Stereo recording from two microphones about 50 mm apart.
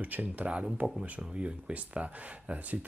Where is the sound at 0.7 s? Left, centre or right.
Right.